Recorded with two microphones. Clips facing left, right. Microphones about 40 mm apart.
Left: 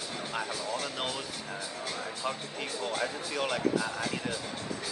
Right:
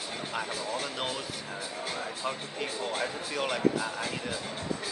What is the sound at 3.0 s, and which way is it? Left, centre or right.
Speech, centre.